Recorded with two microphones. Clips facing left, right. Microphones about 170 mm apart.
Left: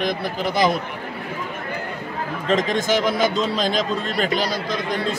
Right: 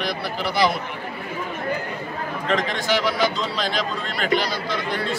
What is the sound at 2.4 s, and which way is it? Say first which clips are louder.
A man's voice: left 4 dB; 45° left (ahead or behind).